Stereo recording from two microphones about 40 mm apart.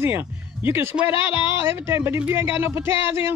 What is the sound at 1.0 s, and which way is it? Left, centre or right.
Speech, right.